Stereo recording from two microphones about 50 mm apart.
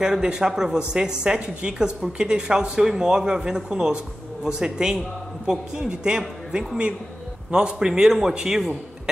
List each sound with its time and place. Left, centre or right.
0.0 s a man's voice: centre